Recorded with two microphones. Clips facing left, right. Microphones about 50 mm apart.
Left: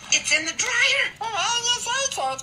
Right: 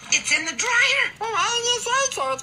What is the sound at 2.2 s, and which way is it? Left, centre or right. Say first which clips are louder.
Speech: right 1 dB; right.